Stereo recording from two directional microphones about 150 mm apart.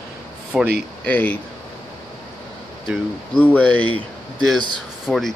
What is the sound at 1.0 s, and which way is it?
Speech, 10° left (ahead or behind).